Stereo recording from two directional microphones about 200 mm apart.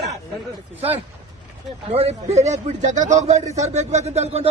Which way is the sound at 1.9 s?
30° right (ahead or behind).